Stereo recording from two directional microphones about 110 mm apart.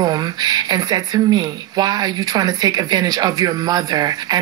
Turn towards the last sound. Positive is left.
turn(degrees=-35)  # may be behind; listen again after turning